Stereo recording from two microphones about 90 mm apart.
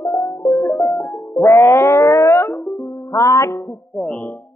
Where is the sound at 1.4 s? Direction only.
35° left (ahead or behind).